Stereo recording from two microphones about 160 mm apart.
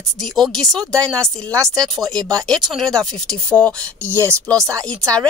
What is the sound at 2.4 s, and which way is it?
Speech, centre (ahead or behind).